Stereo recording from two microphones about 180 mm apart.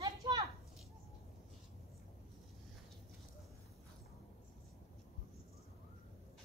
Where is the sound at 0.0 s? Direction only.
20° right (ahead or behind).